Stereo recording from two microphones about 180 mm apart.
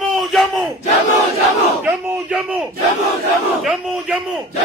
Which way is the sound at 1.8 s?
15° right (ahead or behind).